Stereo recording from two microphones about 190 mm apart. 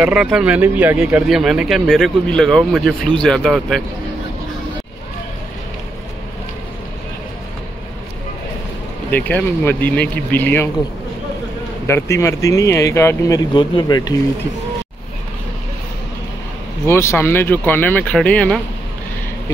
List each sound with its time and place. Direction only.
0.0 s speech: 5° right (ahead or behind)
9.1 s speech: 10° left (ahead or behind)
11.9 s speech: 15° left (ahead or behind)
16.8 s speech: 15° left (ahead or behind)